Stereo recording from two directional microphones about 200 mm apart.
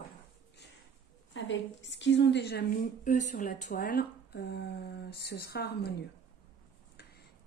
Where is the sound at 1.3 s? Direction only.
65° left (ahead or behind).